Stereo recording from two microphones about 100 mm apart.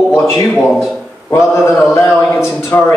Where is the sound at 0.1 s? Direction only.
30° left (ahead or behind).